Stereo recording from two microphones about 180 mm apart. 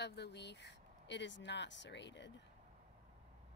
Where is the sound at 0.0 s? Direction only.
70° left (ahead or behind).